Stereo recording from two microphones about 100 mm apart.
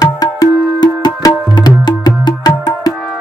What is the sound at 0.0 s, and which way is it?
Music, 40° left (ahead or behind).